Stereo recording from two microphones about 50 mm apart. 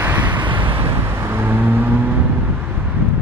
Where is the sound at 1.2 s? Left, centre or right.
Right.